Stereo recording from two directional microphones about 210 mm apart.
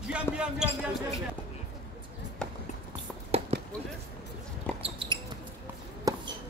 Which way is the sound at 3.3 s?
30° right (ahead or behind).